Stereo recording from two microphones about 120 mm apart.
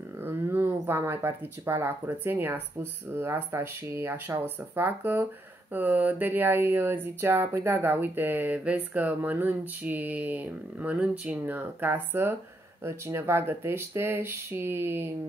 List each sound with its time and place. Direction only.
0.2 s speech: 15° right (ahead or behind)